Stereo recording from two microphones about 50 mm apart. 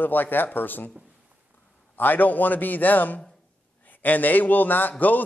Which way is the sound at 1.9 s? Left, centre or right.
Left.